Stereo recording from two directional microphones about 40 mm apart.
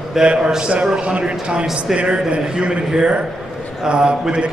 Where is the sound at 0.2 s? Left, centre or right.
Centre.